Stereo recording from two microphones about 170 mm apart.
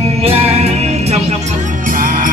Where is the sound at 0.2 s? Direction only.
35° right (ahead or behind).